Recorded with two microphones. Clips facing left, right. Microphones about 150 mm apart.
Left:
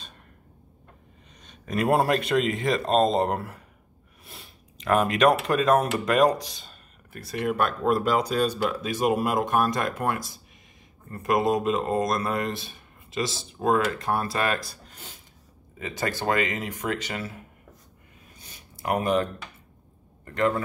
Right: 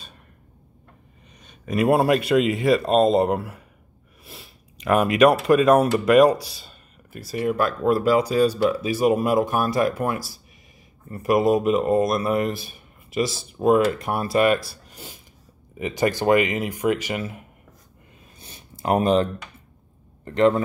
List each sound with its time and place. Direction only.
1.4 s a man's voice: 5° right (ahead or behind)
4.2 s sneeze: centre (ahead or behind)
4.7 s a man's voice: 10° right (ahead or behind)
18.4 s a sound: 25° right (ahead or behind)
20.2 s a man's voice: 25° right (ahead or behind)